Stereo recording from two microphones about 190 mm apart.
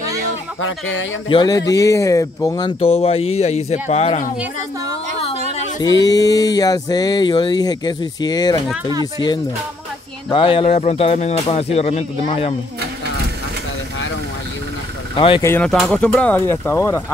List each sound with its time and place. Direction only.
0.6 s speech: 90° left
1.3 s speech: 20° left (ahead or behind)
2.8 s speech: 30° left (ahead or behind)
6.0 s speech: 20° left (ahead or behind)
15.1 s speech: 25° left (ahead or behind)
15.4 s speech: 10° left (ahead or behind)